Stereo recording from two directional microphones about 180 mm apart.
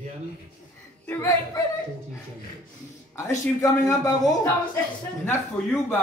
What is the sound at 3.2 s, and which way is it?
A man's voice, 20° left (ahead or behind).